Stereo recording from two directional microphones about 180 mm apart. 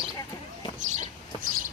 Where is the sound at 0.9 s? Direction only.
50° right (ahead or behind).